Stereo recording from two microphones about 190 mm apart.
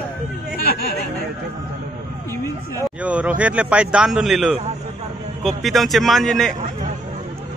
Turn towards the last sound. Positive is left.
turn(degrees=0)  # may be behind; listen again after turning